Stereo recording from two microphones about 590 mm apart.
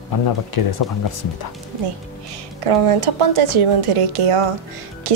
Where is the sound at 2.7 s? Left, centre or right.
Right.